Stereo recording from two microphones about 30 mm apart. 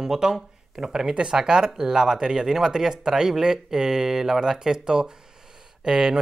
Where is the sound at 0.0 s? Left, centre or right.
Centre.